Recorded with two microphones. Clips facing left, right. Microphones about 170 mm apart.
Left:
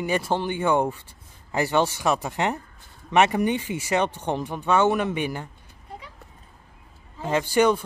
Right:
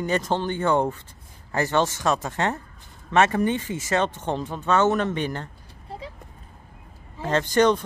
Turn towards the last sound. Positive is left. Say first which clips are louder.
# right 1 dB
turn(degrees=10)  # may be behind; listen again after turning